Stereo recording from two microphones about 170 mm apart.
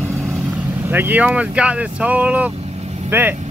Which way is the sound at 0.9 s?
10° right (ahead or behind).